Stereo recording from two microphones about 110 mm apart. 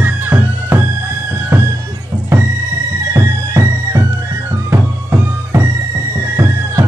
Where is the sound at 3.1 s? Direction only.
25° right (ahead or behind).